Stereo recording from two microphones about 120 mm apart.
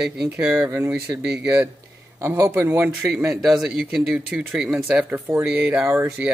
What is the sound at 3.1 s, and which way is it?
Speech, 5° right (ahead or behind).